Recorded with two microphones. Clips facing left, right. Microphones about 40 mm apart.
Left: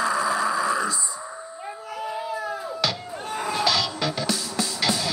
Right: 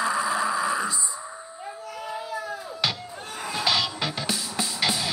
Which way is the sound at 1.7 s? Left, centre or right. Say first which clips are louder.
Left 3 dB; centre.